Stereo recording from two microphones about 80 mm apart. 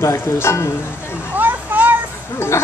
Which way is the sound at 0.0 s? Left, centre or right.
Left.